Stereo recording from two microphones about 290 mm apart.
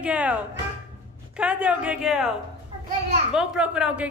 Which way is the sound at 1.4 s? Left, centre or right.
Centre.